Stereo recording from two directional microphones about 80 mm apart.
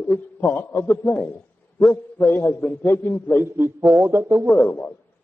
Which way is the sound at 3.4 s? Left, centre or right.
Right.